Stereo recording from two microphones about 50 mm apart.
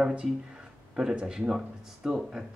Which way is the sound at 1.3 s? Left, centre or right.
Centre.